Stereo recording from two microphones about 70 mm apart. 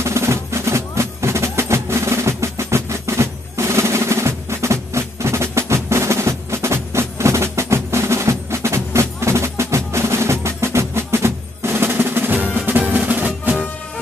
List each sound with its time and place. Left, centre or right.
0.0 s music: right